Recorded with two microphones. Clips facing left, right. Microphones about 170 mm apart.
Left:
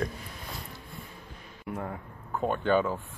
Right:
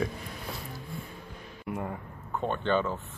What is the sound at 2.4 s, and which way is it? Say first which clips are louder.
Speech: left 2 dB; 5° left (ahead or behind).